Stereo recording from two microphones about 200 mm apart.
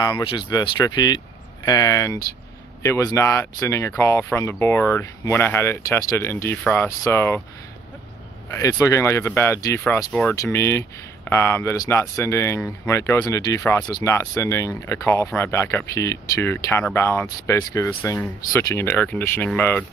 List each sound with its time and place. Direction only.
0.0 s speech: 20° left (ahead or behind)
8.5 s speech: 15° left (ahead or behind)